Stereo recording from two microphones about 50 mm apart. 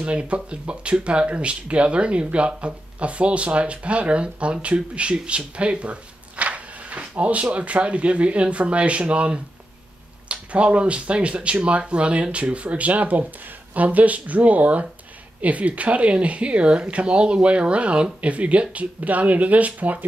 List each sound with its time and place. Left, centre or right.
0.0 s speech: right